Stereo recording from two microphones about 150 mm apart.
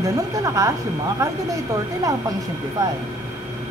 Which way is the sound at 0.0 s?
20° right (ahead or behind).